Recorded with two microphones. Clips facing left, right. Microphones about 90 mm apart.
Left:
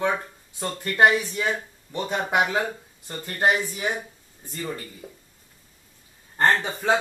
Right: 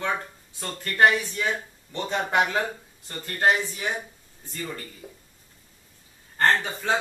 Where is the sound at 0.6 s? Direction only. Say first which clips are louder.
Left 1 dB; 15° left (ahead or behind).